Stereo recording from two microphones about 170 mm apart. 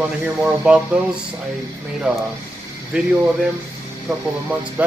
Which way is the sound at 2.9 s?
5° right (ahead or behind).